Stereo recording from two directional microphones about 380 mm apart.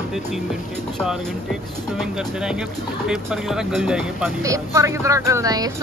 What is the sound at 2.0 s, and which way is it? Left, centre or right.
A woman's voice, centre.